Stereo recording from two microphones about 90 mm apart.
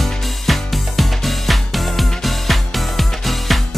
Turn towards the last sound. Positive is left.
turn(degrees=0)  # may be behind; listen again after turning